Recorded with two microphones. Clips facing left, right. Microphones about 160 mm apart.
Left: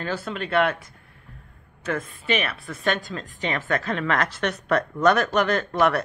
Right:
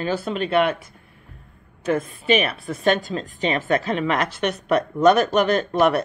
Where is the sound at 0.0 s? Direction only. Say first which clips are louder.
Right 5 dB; 20° right (ahead or behind).